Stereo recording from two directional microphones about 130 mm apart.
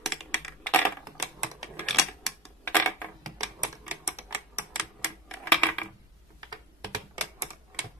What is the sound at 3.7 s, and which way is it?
Typewriter, 20° right (ahead or behind).